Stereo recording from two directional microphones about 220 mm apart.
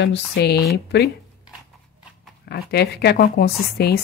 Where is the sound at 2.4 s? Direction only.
45° left (ahead or behind).